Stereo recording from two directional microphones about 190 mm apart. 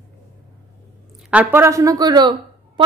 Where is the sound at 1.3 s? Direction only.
10° right (ahead or behind).